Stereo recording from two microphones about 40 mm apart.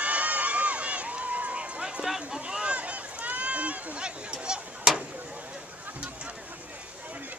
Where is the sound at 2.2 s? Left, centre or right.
Right.